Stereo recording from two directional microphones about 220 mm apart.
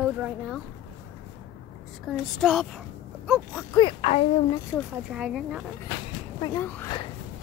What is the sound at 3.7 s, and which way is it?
Speech, 25° left (ahead or behind).